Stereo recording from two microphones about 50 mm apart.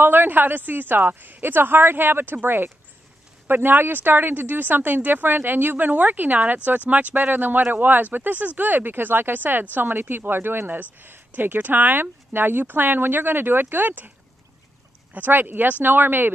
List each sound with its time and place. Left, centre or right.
0.0 s a woman's voice: right
15.1 s a woman's voice: right